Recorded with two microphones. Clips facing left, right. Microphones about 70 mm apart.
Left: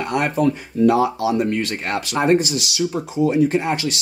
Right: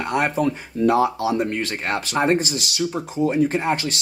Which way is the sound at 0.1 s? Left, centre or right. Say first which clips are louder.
Left 1 dB; centre.